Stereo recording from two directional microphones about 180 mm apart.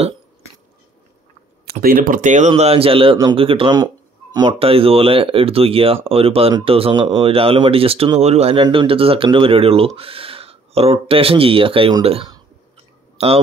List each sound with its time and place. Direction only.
1.7 s speech: 55° right (ahead or behind); by 13.3 s 35° right (ahead or behind)